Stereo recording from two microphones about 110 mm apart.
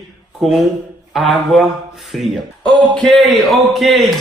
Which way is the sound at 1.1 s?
Centre (ahead or behind).